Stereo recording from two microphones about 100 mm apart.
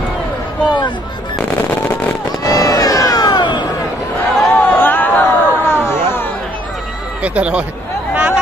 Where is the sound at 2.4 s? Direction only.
40° left (ahead or behind).